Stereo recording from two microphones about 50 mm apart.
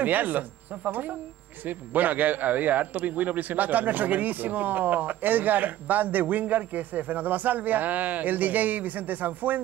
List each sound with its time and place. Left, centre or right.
0.0 s a man's voice: right